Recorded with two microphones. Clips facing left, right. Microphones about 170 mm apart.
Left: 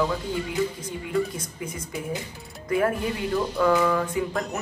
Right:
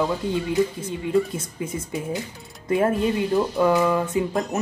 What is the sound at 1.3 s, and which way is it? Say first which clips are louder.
Speech: right 5 dB; 25° right (ahead or behind).